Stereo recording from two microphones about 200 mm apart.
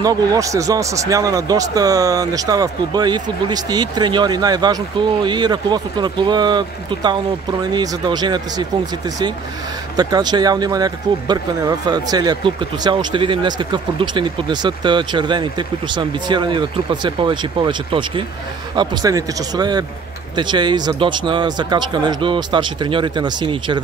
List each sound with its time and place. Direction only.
0.0 s speech: 20° right (ahead or behind)
9.9 s speech: 20° right (ahead or behind)